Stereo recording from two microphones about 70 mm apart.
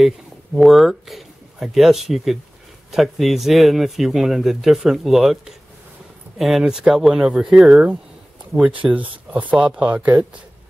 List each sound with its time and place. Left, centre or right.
0.6 s speech: centre
7.7 s speech: centre